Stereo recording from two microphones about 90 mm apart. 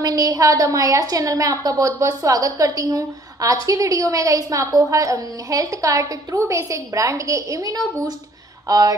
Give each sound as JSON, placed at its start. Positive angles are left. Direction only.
{"t": 0.0, "sound": "a woman's voice", "side_deg": -45}